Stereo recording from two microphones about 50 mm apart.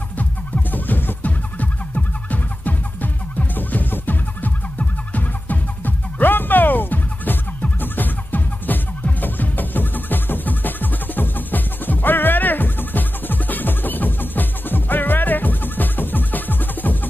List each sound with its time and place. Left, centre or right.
0.2 s music: left